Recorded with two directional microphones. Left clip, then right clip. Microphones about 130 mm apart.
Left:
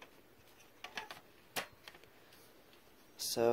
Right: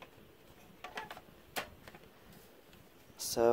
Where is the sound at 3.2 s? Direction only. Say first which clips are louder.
Right 3 dB; 10° right (ahead or behind).